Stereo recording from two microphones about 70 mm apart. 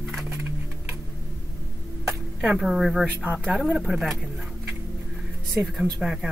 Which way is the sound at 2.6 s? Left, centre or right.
Centre.